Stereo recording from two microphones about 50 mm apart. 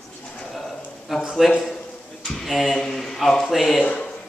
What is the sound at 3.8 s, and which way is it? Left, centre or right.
Speech, centre.